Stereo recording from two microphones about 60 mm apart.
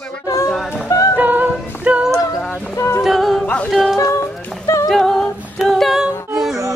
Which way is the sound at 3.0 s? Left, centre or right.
Centre.